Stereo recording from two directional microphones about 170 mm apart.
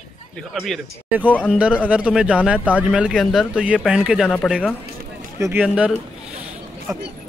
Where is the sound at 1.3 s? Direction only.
10° left (ahead or behind).